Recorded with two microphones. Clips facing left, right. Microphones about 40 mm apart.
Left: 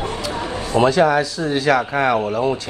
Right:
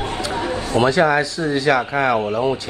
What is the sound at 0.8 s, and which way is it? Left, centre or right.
Speech, centre.